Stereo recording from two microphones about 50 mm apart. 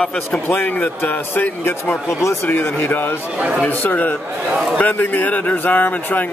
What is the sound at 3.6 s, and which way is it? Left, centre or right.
A man's voice, left.